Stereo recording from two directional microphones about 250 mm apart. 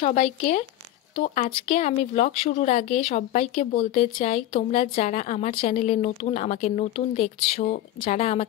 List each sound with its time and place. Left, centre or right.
0.0 s a woman's voice: left